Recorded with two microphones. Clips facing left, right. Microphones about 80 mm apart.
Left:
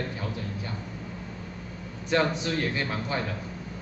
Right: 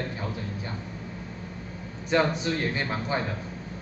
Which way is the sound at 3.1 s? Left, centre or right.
Right.